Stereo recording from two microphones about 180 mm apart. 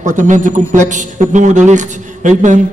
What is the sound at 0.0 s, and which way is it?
Speech, 45° right (ahead or behind).